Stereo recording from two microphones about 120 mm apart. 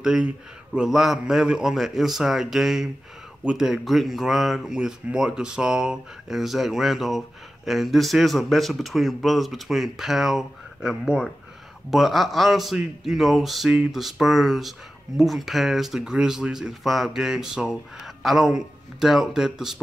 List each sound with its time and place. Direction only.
0.0 s speech: 5° right (ahead or behind)